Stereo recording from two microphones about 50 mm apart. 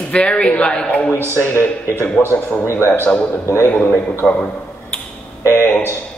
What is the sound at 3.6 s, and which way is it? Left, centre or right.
Speech, left.